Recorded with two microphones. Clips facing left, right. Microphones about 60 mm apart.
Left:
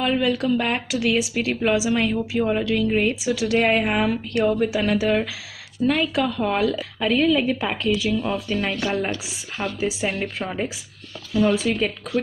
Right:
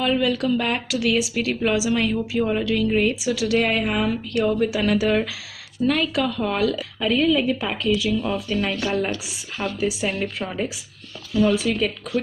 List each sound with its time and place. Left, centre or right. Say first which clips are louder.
0.0 s a woman's voice: even; centre
3.3 s speech: left 4 dB; left
4.7 s a woman's voice: even; centre
11.3 s a woman's voice: even; left